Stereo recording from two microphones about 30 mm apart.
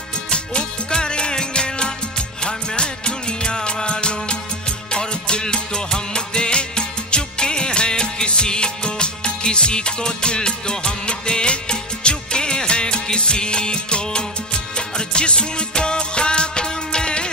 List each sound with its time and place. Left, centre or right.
0.3 s music: left